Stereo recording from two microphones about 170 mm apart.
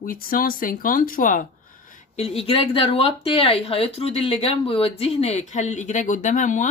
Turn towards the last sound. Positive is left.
turn(degrees=45)  # may be behind; listen again after turning